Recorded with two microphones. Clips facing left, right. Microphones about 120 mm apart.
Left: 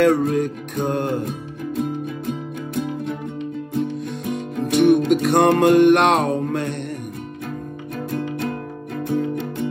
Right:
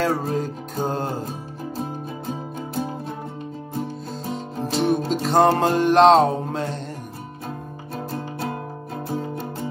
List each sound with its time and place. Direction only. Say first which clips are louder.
0.0 s music: left 6 dB; 30° right (ahead or behind)
8.1 s music: left 5 dB; 35° right (ahead or behind)